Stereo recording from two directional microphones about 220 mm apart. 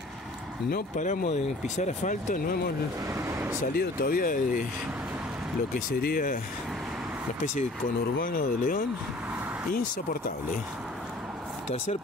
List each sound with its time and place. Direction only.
0.7 s speech: 40° left (ahead or behind)
3.2 s vehicle: 10° right (ahead or behind)
3.6 s speech: 45° left (ahead or behind)
5.9 s speech: 40° left (ahead or behind)
8.2 s speech: 40° left (ahead or behind)